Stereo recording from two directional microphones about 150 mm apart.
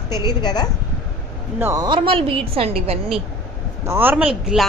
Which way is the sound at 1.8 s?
35° right (ahead or behind).